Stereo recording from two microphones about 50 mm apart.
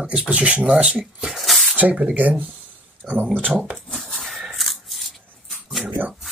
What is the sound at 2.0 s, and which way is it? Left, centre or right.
Speech, right.